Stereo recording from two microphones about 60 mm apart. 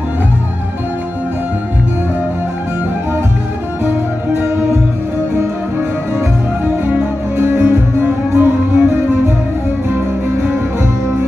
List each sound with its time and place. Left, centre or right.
7.3 s music: right